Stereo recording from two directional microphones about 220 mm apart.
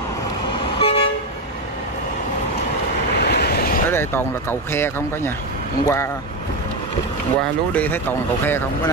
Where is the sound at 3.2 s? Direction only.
45° left (ahead or behind).